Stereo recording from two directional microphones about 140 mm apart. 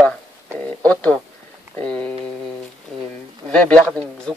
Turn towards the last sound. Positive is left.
turn(degrees=5)  # may be behind; listen again after turning